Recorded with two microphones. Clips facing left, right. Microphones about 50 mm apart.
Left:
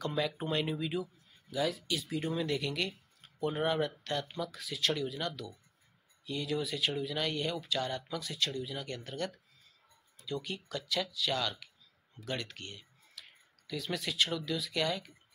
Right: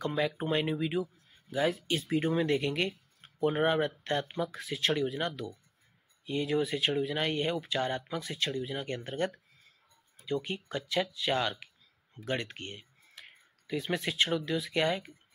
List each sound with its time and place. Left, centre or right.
0.0 s speech: centre
1.5 s speech: right